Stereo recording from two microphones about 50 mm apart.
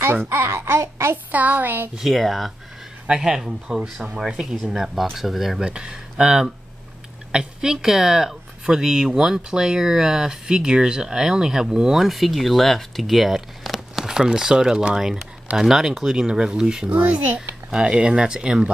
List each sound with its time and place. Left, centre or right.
0.3 s a child's voice: right
1.1 s a sound: right
2.0 s speech: centre
3.1 s speech: centre
5.6 s speech: centre